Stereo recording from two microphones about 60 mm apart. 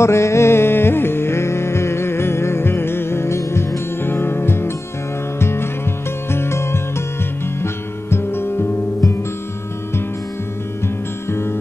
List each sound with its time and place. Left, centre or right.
0.0 s music: left
4.0 s music: left
10.8 s music: left